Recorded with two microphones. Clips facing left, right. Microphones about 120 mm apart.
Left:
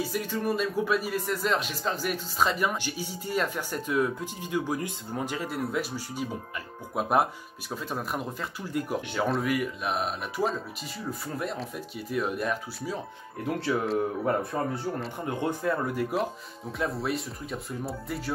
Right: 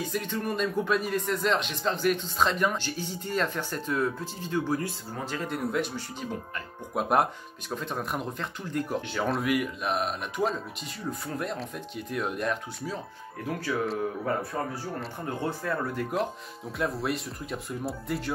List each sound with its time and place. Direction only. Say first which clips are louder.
0.0 s speech: left 2 dB; 5° left (ahead or behind)
9.3 s speech: right 2 dB; centre (ahead or behind)
13.7 s speech: left 2 dB; 20° left (ahead or behind); by 18.3 s centre (ahead or behind)